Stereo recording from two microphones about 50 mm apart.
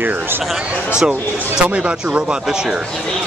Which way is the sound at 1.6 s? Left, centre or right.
Right.